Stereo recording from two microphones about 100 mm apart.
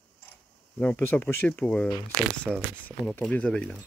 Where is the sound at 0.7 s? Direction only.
10° left (ahead or behind).